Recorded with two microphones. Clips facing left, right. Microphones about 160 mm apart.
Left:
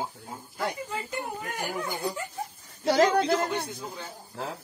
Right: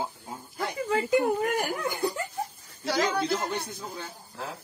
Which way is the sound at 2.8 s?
45° left (ahead or behind).